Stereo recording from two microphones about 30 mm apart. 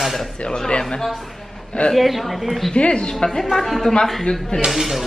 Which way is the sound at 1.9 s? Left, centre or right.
Centre.